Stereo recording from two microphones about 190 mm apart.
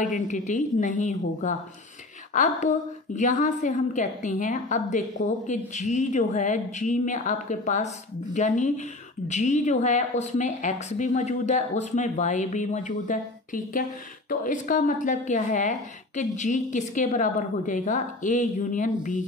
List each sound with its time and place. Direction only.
0.0 s a woman's voice: 40° left (ahead or behind)